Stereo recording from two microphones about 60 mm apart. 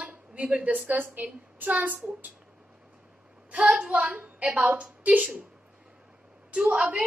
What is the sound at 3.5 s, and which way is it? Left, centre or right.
A woman's voice, centre.